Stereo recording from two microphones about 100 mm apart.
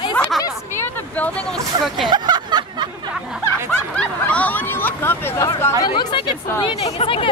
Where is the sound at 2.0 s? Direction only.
45° right (ahead or behind).